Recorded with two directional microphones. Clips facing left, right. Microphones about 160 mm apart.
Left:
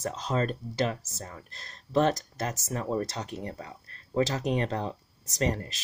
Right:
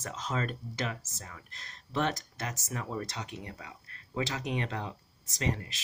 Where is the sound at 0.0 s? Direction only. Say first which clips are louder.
Left 6 dB; 35° left (ahead or behind).